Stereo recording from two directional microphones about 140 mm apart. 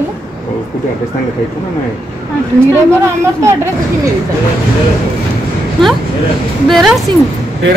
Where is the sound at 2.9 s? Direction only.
20° right (ahead or behind).